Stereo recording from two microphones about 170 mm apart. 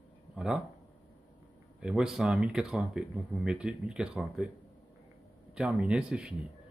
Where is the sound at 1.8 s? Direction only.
5° right (ahead or behind).